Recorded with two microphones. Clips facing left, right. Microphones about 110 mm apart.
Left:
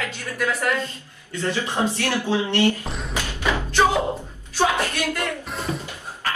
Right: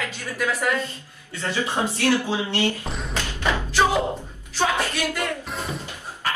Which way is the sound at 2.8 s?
Centre (ahead or behind).